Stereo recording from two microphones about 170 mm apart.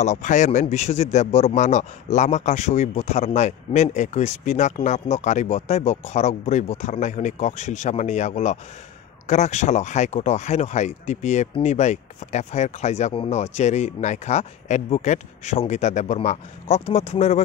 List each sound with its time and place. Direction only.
0.0 s speech: 45° left (ahead or behind)